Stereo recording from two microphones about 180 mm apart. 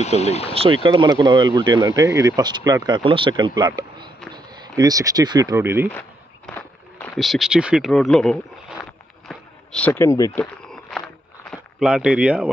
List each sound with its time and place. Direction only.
0.0 s speech: 35° left (ahead or behind)
0.8 s speech: 25° right (ahead or behind)
5.9 s walk: 10° left (ahead or behind)
7.2 s speech: centre (ahead or behind); by 10.4 s 15° left (ahead or behind)
10.4 s walk: 5° left (ahead or behind)
11.8 s speech: 5° right (ahead or behind)